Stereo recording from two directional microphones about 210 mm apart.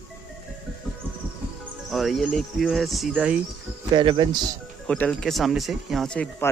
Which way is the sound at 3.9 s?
20° right (ahead or behind).